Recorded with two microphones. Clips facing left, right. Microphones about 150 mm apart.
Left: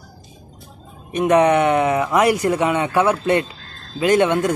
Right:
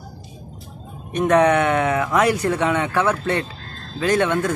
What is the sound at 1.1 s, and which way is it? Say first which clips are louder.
A man's voice: left 1 dB; 10° left (ahead or behind).